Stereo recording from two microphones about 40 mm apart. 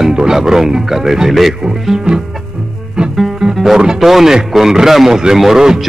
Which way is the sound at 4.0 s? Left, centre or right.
Centre.